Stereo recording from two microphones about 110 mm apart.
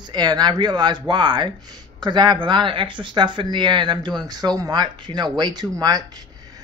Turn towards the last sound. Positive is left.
turn(degrees=-35)  # may be behind; listen again after turning